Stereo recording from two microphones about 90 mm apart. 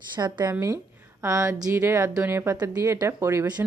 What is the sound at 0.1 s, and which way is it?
Speech, 55° right (ahead or behind).